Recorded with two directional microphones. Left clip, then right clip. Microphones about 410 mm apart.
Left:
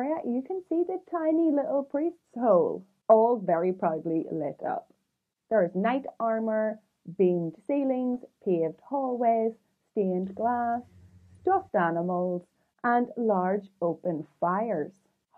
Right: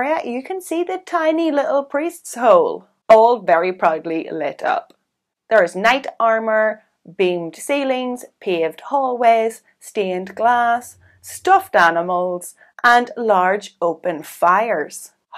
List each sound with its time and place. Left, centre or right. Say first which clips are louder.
0.0 s speech: right 10 dB; centre
2.6 s speech: right 8 dB; centre
12.1 s speech: right 10 dB; centre